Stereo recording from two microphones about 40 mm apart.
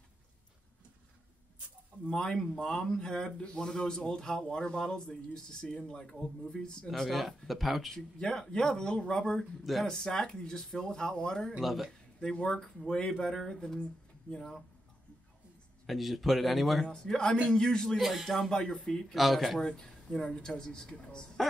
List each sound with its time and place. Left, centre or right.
2.3 s speech: centre; by 6.9 s left
7.1 s speech: centre
7.9 s speech: centre
11.6 s speech: centre
12.2 s speech: centre
13.6 s speech: left
15.9 s speech: centre
16.8 s speech: centre
17.9 s speech: centre
18.5 s speech: centre
19.1 s speech: centre
19.7 s a sound: centre
20.2 s speech: left
20.4 s speech: centre